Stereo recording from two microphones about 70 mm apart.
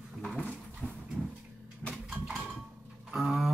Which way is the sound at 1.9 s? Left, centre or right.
Centre.